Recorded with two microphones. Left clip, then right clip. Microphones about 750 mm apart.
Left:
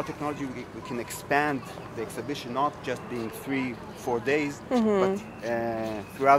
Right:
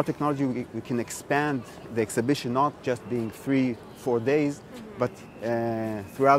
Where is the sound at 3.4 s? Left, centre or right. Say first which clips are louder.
Right 6 dB; right.